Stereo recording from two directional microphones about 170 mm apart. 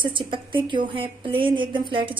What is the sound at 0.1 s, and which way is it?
A woman's voice, 30° right (ahead or behind).